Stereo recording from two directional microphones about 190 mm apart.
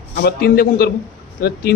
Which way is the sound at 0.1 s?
55° left (ahead or behind).